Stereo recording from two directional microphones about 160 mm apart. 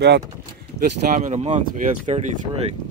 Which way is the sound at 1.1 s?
50° right (ahead or behind).